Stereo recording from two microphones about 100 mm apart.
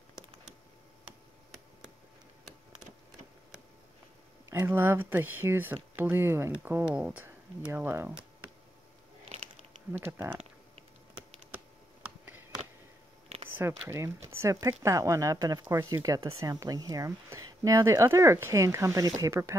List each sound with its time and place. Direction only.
4.6 s speech: 20° right (ahead or behind)
13.6 s speech: 25° right (ahead or behind)